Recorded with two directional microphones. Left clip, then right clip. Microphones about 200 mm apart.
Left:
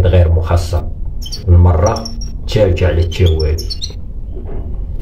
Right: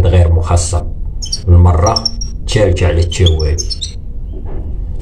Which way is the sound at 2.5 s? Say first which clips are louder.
Even; 15° right (ahead or behind).